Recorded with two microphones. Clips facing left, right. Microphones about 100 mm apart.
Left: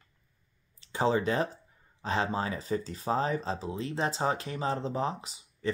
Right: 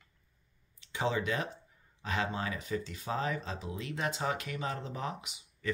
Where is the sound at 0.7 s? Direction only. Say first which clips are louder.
Left 5 dB; 35° left (ahead or behind).